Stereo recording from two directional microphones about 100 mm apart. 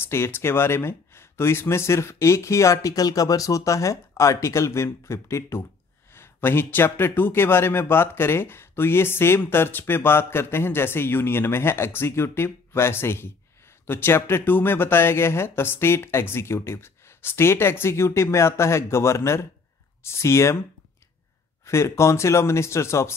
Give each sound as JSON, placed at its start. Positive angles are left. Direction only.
{"t": 0.0, "sound": "speech", "side_deg": 25}
{"t": 21.6, "sound": "speech", "side_deg": 30}